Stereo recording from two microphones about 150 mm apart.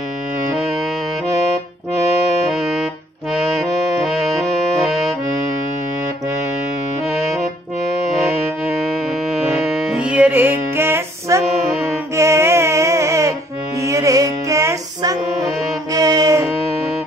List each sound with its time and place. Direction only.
2.5 s saxophone: centre (ahead or behind)
3.6 s accordion: centre (ahead or behind)
9.5 s music: 5° right (ahead or behind); by 16.4 s 25° right (ahead or behind)